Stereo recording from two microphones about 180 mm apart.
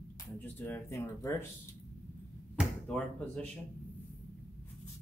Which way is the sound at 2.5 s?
5° left (ahead or behind).